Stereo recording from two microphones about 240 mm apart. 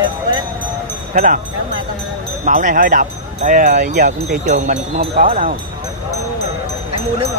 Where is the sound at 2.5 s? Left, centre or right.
Right.